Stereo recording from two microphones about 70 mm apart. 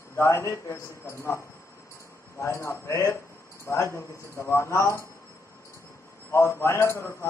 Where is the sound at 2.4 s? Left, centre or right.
Left.